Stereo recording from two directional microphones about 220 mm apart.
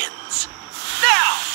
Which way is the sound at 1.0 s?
50° right (ahead or behind).